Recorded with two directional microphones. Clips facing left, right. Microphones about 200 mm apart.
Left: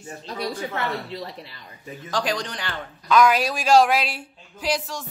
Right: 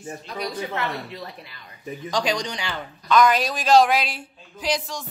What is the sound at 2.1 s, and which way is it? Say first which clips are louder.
A man's voice: right 1 dB; 5° left (ahead or behind).